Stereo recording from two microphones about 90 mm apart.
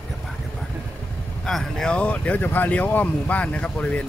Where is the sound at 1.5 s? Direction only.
5° left (ahead or behind).